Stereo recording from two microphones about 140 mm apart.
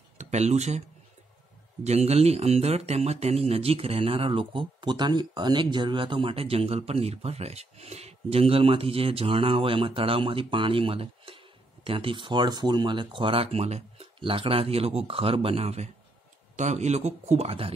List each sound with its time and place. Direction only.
0.2 s speech: 55° right (ahead or behind)
1.9 s speech: 50° right (ahead or behind)